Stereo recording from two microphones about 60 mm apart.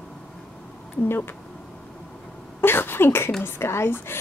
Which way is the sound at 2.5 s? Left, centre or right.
Left.